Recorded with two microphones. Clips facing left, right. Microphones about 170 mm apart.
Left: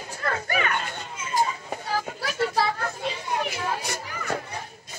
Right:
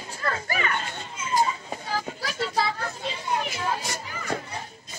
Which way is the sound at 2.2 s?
55° left (ahead or behind).